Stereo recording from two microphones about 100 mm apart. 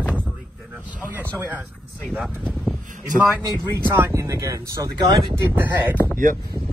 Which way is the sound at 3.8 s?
25° right (ahead or behind).